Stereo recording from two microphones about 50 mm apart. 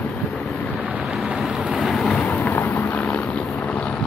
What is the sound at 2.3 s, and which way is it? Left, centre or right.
Boat, left.